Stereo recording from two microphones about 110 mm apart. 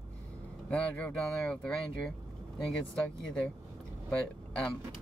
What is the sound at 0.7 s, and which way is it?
Speech, 10° left (ahead or behind).